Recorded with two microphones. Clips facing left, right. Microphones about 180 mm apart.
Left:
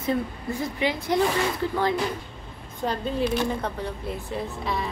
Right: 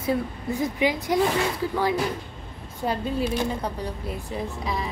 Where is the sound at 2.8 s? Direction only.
10° right (ahead or behind).